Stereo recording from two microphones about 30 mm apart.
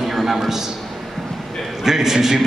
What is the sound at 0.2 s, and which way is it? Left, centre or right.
Speech, centre.